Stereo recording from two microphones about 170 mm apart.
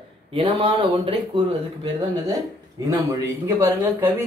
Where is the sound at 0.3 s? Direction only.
30° right (ahead or behind).